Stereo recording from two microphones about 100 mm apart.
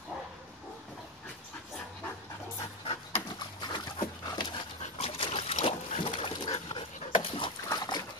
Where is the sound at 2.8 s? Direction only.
65° left (ahead or behind).